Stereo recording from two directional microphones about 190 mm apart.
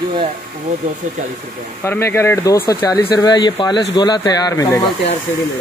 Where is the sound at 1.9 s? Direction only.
15° left (ahead or behind).